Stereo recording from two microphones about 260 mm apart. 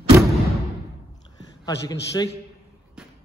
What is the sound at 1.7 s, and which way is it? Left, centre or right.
Speech, centre.